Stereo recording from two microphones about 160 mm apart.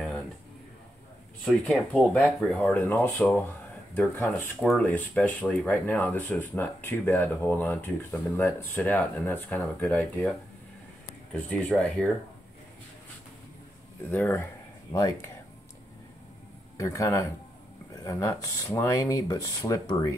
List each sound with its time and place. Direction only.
1.4 s speech: 5° left (ahead or behind)
11.3 s speech: 10° left (ahead or behind)
14.1 s speech: 10° left (ahead or behind)
16.7 s speech: 20° left (ahead or behind)